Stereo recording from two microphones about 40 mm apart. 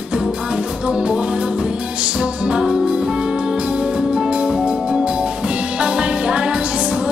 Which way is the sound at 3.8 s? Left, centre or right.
Right.